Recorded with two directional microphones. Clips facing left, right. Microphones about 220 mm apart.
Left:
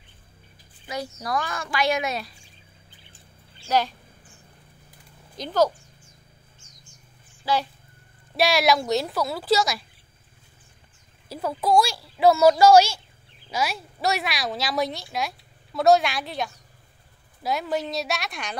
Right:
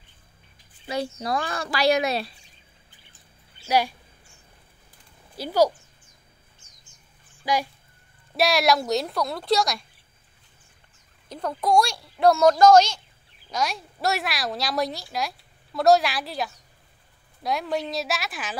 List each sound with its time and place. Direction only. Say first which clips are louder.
0.8 s speech: right 3 dB; 30° right (ahead or behind)
3.6 s speech: right 1 dB; 10° right (ahead or behind)
5.3 s speech: right 1 dB; 10° right (ahead or behind)
7.4 s a child's voice: even; 15° right (ahead or behind)
8.4 s speech: even; centre (ahead or behind)
11.2 s a child's voice: left 1 dB; 5° left (ahead or behind)